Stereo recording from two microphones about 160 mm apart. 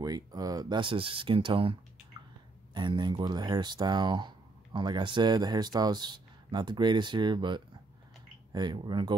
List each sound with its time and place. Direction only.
0.0 s speech: 25° right (ahead or behind)